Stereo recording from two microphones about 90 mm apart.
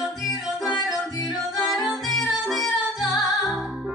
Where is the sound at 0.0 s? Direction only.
Centre (ahead or behind).